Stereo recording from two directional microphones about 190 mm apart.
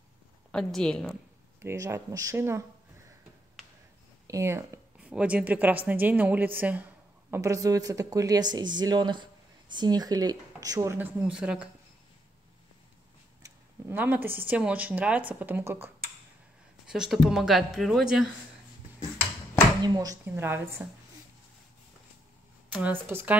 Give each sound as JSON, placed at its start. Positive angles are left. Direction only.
{"t": 0.5, "sound": "speech", "side_deg": 5}
{"t": 1.6, "sound": "a woman's voice", "side_deg": -15}
{"t": 4.3, "sound": "a woman's voice", "side_deg": -15}
{"t": 4.9, "sound": "a woman's voice", "side_deg": -5}
{"t": 13.4, "sound": "a sound", "side_deg": -10}
{"t": 14.5, "sound": "a woman's voice", "side_deg": -10}
{"t": 19.8, "sound": "a woman's voice", "side_deg": -20}
{"t": 22.7, "sound": "a woman's voice", "side_deg": -10}